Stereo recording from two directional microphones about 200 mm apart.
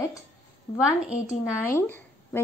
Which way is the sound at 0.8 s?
5° right (ahead or behind).